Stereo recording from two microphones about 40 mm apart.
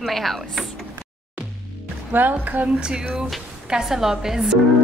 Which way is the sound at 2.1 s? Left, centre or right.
Right.